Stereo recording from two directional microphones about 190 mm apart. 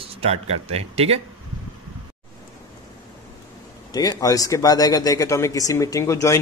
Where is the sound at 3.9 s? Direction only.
20° left (ahead or behind).